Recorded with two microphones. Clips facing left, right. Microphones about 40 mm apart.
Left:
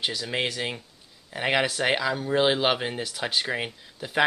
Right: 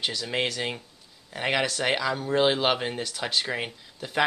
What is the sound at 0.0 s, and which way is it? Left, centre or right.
Speech, centre.